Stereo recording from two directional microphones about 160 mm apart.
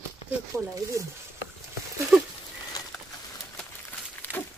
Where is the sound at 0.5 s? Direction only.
20° right (ahead or behind).